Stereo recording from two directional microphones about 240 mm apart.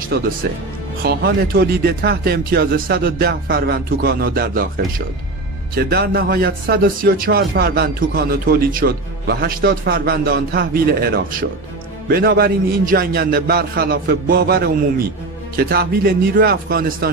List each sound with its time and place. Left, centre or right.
0.1 s speech: right
5.8 s speech: right